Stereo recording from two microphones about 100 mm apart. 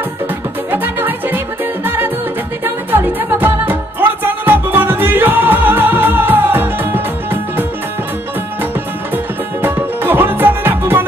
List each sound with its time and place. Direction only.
0.7 s music: 20° right (ahead or behind)
2.6 s music: 20° right (ahead or behind)
9.1 s music: 20° right (ahead or behind)